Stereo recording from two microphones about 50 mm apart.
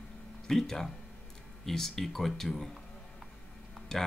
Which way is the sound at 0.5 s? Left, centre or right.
Centre.